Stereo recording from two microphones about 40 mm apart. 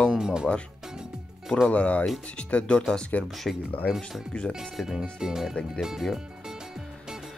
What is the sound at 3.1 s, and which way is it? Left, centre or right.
Speech, left.